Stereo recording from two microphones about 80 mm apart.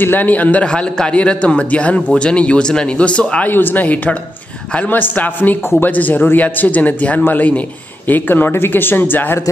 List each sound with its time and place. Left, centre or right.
0.0 s speech: left